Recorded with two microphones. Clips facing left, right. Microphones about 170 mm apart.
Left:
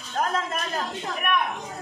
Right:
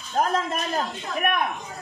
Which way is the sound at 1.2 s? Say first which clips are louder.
Even; 50° right (ahead or behind).